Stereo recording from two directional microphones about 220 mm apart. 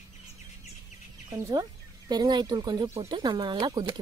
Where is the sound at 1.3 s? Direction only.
15° right (ahead or behind).